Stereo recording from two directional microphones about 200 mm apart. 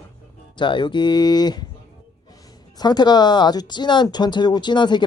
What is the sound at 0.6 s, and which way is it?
Speech, 25° left (ahead or behind).